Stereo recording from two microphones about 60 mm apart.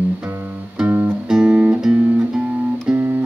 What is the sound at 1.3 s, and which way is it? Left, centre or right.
Guitar, centre.